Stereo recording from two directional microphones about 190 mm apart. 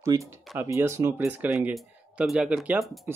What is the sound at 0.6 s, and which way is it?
Speech, 15° right (ahead or behind).